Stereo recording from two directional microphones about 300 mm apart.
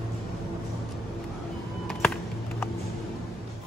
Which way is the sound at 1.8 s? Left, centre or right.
Centre.